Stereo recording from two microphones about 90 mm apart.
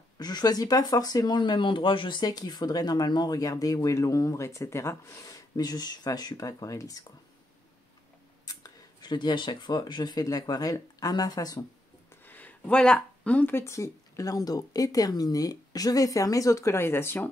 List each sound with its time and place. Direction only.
0.2 s speech: 50° left (ahead or behind); by 4.9 s 30° left (ahead or behind)
5.2 s speech: 45° left (ahead or behind)
8.5 s speech: 50° left (ahead or behind)
12.1 s speech: 20° left (ahead or behind)